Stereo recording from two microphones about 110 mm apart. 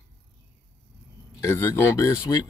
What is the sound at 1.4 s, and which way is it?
Speech, 25° left (ahead or behind).